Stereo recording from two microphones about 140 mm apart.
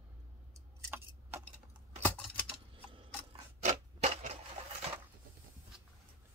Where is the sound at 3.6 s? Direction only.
55° right (ahead or behind).